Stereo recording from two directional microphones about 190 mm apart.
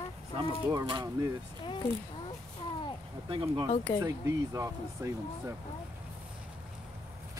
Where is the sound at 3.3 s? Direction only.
25° right (ahead or behind).